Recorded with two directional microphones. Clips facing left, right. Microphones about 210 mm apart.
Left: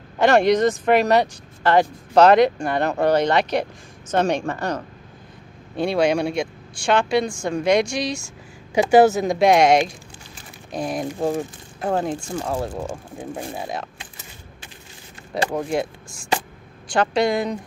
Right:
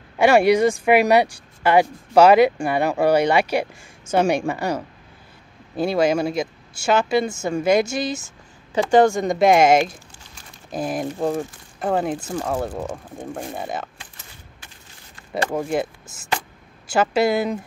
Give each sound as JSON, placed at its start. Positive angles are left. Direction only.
{"t": 0.2, "sound": "speech", "side_deg": -10}
{"t": 8.7, "sound": "speech", "side_deg": 5}
{"t": 15.5, "sound": "speech", "side_deg": 0}
{"t": 16.9, "sound": "speech", "side_deg": -5}